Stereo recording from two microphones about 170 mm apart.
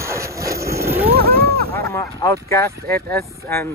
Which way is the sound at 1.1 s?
65° right (ahead or behind).